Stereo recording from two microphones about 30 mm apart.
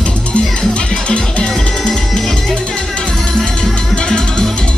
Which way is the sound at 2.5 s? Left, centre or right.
Left.